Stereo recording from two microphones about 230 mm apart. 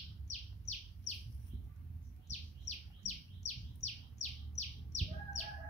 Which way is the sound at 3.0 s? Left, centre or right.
Left.